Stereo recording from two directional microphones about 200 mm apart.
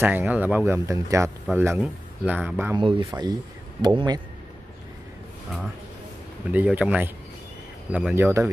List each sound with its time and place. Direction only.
0.0 s speech: 10° right (ahead or behind)
2.7 s speech: 20° right (ahead or behind)
6.5 s speech: 5° right (ahead or behind)